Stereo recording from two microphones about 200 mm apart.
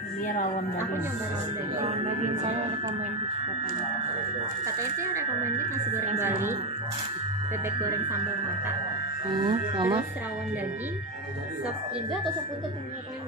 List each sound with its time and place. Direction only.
4.9 s speech: 15° right (ahead or behind)
9.5 s speech: 20° right (ahead or behind)